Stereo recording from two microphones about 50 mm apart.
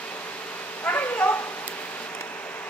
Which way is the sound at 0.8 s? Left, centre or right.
Left.